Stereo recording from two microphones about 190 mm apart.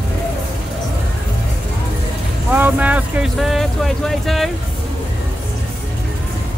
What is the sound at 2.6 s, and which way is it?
Music, 10° right (ahead or behind).